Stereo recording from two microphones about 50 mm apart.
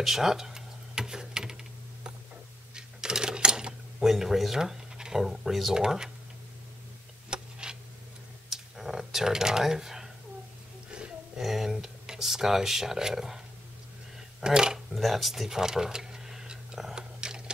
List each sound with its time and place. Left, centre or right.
0.0 s computer keyboard: centre
2.7 s sewing machine: centre
4.0 s speech: centre
5.8 s speech: centre
7.2 s a sound: centre
8.5 s a sound: centre
10.9 s a sound: centre
11.4 s speech: centre
14.4 s speech: centre
15.0 s tick-tock: centre